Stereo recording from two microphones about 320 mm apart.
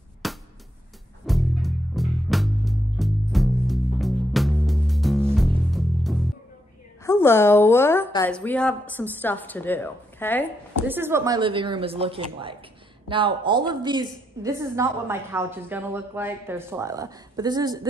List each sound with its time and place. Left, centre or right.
0.2 s music: centre
7.0 s a woman's voice: centre
10.9 s a woman's voice: centre